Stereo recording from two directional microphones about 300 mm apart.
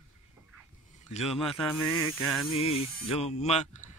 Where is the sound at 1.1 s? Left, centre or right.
Left.